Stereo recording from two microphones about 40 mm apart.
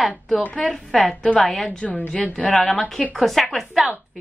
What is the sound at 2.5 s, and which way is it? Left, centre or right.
A woman's voice, centre.